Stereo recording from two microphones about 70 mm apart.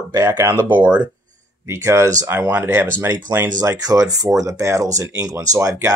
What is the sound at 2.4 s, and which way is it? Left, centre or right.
Speech, right.